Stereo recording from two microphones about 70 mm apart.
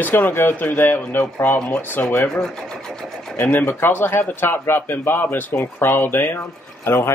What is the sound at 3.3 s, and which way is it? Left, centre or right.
A man's voice, left.